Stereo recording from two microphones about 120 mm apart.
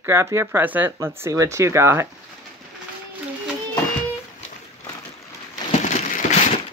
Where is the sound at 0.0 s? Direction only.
20° right (ahead or behind).